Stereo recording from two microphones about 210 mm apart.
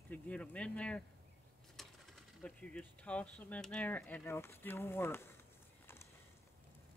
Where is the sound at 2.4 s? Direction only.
5° left (ahead or behind).